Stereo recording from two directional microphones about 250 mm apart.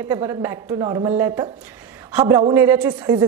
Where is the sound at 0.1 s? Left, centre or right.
Centre.